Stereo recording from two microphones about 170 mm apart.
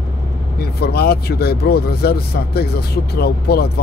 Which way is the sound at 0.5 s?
70° left (ahead or behind).